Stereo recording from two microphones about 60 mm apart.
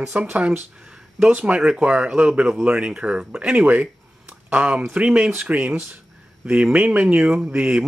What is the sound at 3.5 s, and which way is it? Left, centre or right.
Speech, right.